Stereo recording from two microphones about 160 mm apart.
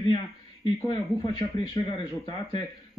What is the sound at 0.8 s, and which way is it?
A man's voice, 30° left (ahead or behind).